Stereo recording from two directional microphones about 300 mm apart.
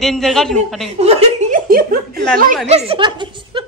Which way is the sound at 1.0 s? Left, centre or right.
Right.